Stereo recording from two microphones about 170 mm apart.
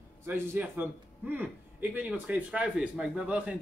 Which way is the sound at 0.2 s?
15° right (ahead or behind).